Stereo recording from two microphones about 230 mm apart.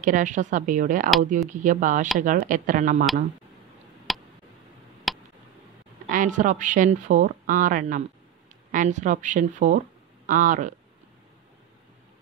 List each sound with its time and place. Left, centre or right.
0.0 s speech: right
4.1 s a sound: centre
5.1 s tick: centre
6.0 s speech: right